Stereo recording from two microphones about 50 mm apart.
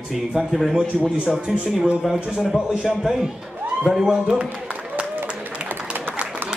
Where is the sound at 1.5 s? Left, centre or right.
Centre.